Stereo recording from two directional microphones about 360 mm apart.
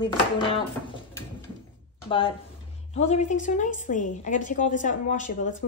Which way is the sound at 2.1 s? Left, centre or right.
Centre.